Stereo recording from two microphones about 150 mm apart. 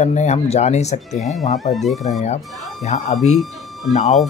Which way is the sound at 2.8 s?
45° left (ahead or behind).